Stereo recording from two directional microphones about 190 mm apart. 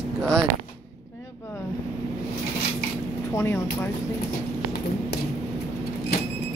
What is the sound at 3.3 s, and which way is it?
Speech, 15° left (ahead or behind).